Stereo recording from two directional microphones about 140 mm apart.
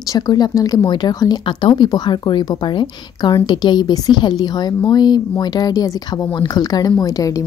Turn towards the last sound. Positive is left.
turn(degrees=25)  # may be behind; listen again after turning